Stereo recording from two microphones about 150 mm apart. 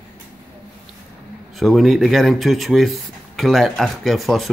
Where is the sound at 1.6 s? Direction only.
Centre (ahead or behind).